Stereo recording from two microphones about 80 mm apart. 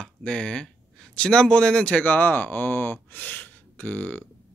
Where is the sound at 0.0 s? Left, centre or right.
Centre.